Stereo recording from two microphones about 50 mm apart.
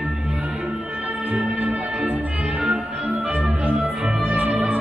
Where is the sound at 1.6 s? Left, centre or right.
Right.